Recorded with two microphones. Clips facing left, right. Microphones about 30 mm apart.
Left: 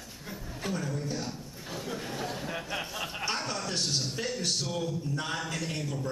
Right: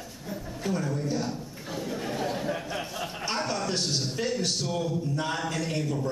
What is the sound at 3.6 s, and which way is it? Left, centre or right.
A man's voice, centre.